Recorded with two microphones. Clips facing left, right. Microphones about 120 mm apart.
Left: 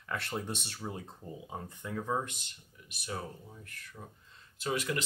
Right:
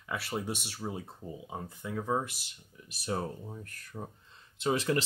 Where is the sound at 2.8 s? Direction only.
35° right (ahead or behind).